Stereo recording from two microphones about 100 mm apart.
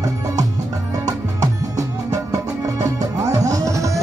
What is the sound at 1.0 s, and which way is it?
Music, 35° right (ahead or behind).